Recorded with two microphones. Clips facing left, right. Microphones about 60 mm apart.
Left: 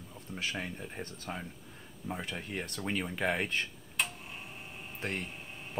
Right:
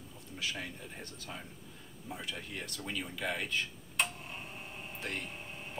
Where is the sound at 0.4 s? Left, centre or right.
Left.